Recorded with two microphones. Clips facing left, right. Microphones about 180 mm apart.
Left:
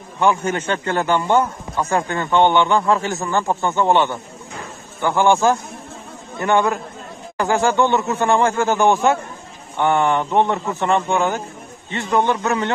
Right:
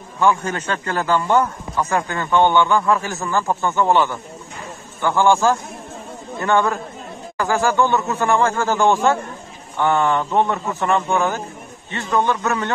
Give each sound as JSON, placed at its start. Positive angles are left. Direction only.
{"t": 0.2, "sound": "a man's voice", "side_deg": 20}